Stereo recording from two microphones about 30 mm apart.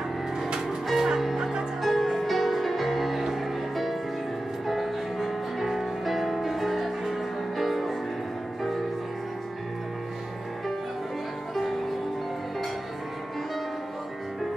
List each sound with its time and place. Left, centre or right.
0.9 s music: centre
1.8 s music: centre